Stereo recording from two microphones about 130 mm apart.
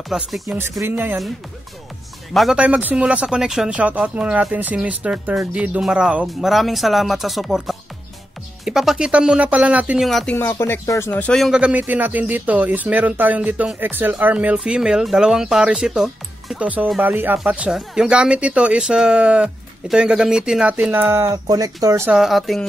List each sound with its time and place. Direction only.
0.1 s speech: 5° right (ahead or behind)
0.5 s speech: 20° right (ahead or behind)
2.3 s speech: 5° right (ahead or behind)
10.0 s speech: centre (ahead or behind)
10.3 s speech: 20° left (ahead or behind)
11.3 s speech: 5° right (ahead or behind); by 22.1 s 20° right (ahead or behind)
22.1 s speech: centre (ahead or behind)